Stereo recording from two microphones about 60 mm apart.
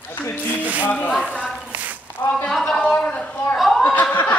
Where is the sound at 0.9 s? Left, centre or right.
Left.